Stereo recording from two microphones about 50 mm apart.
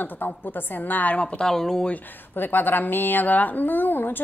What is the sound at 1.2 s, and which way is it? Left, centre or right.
Speech, left.